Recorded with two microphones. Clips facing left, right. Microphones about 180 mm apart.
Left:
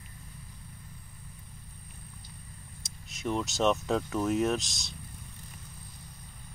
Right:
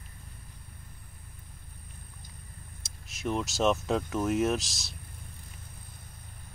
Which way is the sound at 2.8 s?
Centre (ahead or behind).